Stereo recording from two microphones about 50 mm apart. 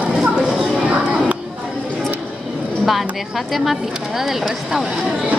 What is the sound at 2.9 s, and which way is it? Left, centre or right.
A woman's voice, centre.